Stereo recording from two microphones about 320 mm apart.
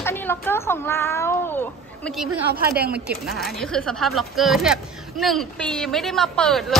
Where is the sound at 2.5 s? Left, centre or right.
Right.